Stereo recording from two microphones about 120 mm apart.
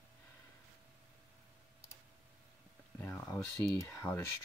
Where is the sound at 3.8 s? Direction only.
25° left (ahead or behind).